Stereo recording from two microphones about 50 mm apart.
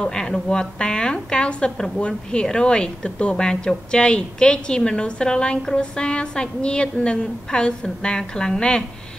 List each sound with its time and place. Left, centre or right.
0.0 s a woman's voice: centre